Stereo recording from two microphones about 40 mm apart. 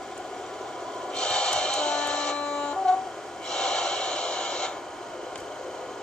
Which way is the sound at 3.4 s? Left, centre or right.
Centre.